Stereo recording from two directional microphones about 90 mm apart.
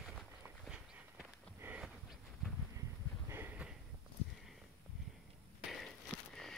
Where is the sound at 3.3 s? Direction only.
20° right (ahead or behind).